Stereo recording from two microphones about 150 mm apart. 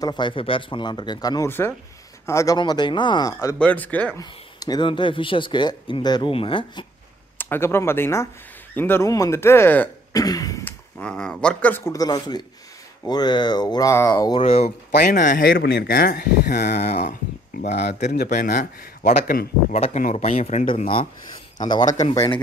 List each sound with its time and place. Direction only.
0.0 s speech: 30° left (ahead or behind)
3.5 s speech: 10° left (ahead or behind)
4.2 s speech: 25° left (ahead or behind)
7.3 s speech: 15° left (ahead or behind)
10.1 s cough: 25° left (ahead or behind)
10.6 s speech: 5° left (ahead or behind); by 14.4 s 25° left (ahead or behind)
14.4 s speech: 45° left (ahead or behind)
15.0 s speech: 75° left (ahead or behind); by 16.6 s 90° left
16.6 s speech: 45° left (ahead or behind); by 19.8 s 60° left (ahead or behind)
19.8 s speech: 50° left (ahead or behind)
21.5 s speech: 30° left (ahead or behind)